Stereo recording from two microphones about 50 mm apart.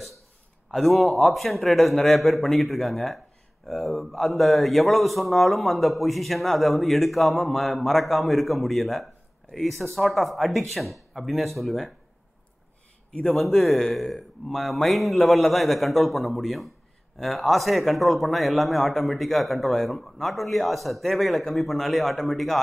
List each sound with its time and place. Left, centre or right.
0.7 s a man's voice: centre
13.1 s a man's voice: left
13.4 s a man's voice: centre